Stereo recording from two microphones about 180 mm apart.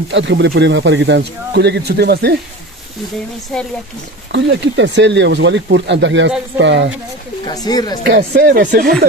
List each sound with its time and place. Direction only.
0.1 s speech: 80° right
4.3 s speech: 80° right
7.4 s speech: 20° left (ahead or behind)
8.1 s speech: 60° right (ahead or behind)